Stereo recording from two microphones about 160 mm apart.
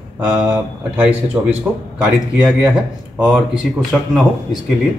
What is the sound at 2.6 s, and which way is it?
Speech, 5° right (ahead or behind).